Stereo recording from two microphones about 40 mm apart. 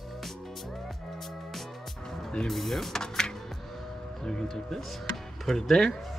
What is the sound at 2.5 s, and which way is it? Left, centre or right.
Speech, centre.